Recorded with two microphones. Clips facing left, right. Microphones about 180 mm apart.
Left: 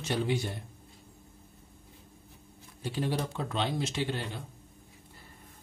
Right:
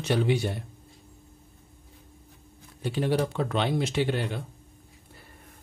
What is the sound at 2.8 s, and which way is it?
Speech, 65° right (ahead or behind).